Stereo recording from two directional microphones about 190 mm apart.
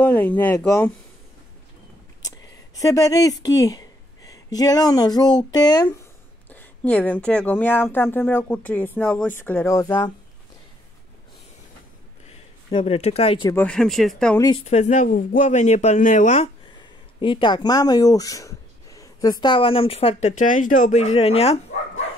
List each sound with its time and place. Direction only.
0.0 s speech: 10° left (ahead or behind)
2.2 s speech: 20° left (ahead or behind)
6.5 s speech: 10° left (ahead or behind)
12.3 s speech: 30° left (ahead or behind)
13.5 s speech: 10° left (ahead or behind)
14.4 s speech: 30° left (ahead or behind)
17.2 s speech: 25° left (ahead or behind)